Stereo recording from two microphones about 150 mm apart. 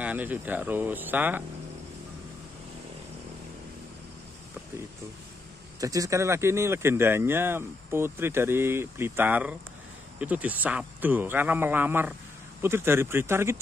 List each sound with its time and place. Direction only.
0.0 s speech: 10° right (ahead or behind)
5.8 s speech: 20° right (ahead or behind)